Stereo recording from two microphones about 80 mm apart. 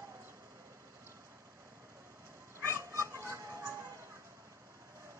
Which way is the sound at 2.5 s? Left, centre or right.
Right.